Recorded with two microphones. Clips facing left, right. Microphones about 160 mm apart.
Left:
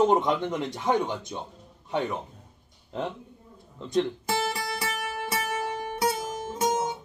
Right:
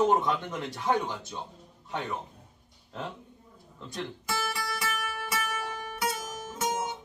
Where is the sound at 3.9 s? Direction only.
30° left (ahead or behind).